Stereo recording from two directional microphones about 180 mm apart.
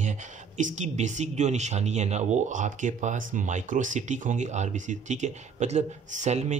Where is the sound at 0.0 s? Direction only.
45° right (ahead or behind).